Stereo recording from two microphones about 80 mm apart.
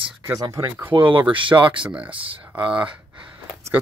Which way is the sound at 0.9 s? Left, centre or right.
Right.